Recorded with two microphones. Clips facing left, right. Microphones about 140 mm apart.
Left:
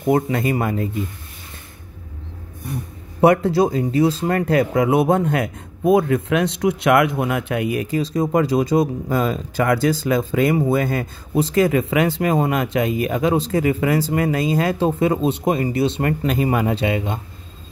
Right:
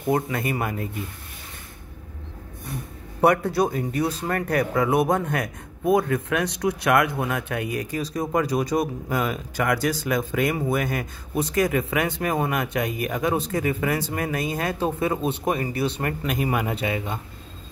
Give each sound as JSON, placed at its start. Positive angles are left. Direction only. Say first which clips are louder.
{"t": 0.3, "sound": "speech", "louder": "left 6 dB", "side_deg": 25}
{"t": 3.2, "sound": "speech", "louder": "left 5 dB", "side_deg": 25}